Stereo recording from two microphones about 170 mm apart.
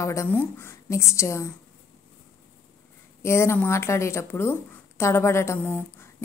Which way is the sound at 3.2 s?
15° left (ahead or behind).